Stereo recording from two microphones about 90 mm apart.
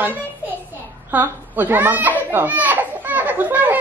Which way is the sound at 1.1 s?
20° right (ahead or behind).